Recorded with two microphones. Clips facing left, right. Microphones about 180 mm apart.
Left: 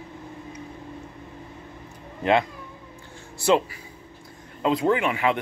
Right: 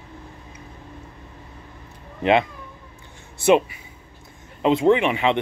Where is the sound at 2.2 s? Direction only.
20° right (ahead or behind).